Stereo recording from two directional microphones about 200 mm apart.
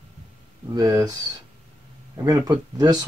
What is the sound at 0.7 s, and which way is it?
Speech, 15° right (ahead or behind).